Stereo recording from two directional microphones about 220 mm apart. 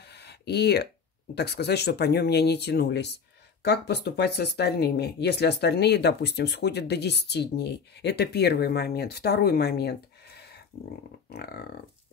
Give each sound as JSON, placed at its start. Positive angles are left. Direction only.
{"t": 0.0, "sound": "a sound", "side_deg": 50}
{"t": 1.3, "sound": "speech", "side_deg": 50}
{"t": 11.2, "sound": "speech", "side_deg": 45}